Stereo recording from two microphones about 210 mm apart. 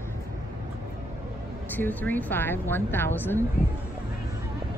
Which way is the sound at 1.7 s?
10° left (ahead or behind).